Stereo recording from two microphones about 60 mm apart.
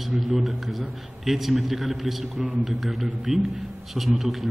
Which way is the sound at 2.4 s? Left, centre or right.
Centre.